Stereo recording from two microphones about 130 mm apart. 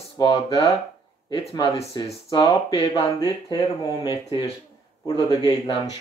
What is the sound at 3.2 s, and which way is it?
Speech, 30° left (ahead or behind).